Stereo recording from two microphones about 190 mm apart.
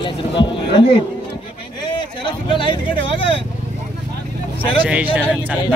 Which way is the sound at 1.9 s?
25° left (ahead or behind).